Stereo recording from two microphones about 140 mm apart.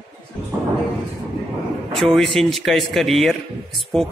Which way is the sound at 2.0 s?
Centre (ahead or behind).